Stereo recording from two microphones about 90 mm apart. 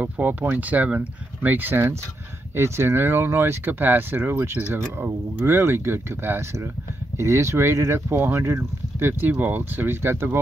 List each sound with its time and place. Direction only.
0.0 s speech: 20° right (ahead or behind)